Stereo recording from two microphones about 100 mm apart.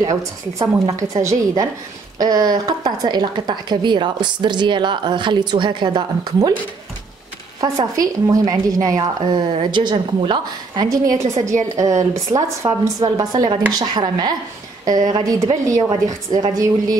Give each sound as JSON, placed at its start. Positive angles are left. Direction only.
{"t": 0.0, "sound": "a woman's voice", "side_deg": -35}
{"t": 7.6, "sound": "speech", "side_deg": -35}
{"t": 10.9, "sound": "a woman's voice", "side_deg": -35}